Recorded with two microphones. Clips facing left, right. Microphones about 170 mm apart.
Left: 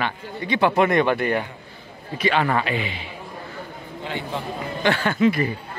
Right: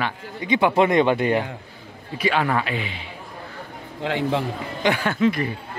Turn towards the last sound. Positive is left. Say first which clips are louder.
# left 1 dB
turn(degrees=5)  # may be behind; listen again after turning